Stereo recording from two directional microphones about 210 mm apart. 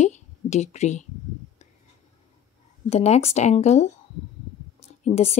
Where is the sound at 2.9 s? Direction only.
30° left (ahead or behind).